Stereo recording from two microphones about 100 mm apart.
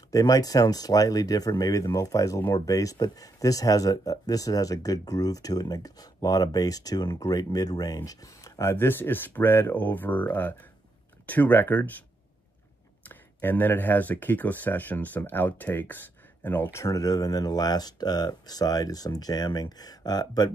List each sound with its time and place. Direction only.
0.1 s speech: 40° left (ahead or behind); by 12.0 s 15° left (ahead or behind)
13.1 s speech: 20° left (ahead or behind)
16.8 s speech: 35° left (ahead or behind)